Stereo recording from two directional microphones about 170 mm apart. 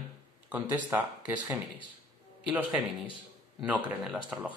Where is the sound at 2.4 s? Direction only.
10° right (ahead or behind).